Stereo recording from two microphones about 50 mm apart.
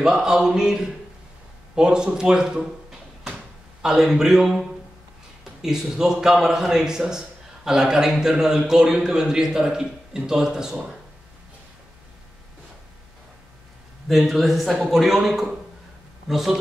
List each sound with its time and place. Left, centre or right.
0.0 s a man's voice: centre
3.8 s a man's voice: centre
14.0 s a man's voice: centre